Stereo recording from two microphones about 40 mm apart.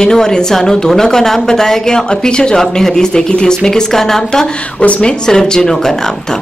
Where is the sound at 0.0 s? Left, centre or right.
Centre.